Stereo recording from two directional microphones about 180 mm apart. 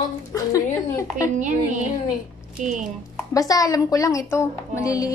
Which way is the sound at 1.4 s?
45° right (ahead or behind).